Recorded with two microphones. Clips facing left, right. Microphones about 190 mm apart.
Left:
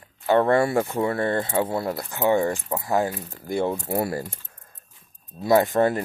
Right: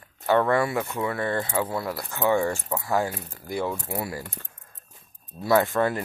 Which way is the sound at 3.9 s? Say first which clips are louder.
Left 6 dB; 40° left (ahead or behind).